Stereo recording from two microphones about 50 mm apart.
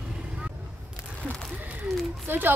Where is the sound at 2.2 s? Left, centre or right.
Right.